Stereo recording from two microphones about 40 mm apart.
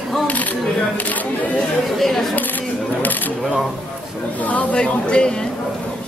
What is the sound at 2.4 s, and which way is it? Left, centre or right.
Single-lens reflex camera, left.